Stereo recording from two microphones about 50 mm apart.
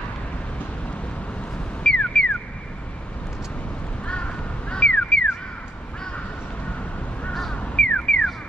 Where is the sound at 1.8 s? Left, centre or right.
Centre.